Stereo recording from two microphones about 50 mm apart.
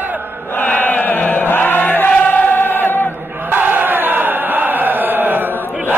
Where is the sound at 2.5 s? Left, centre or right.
Left.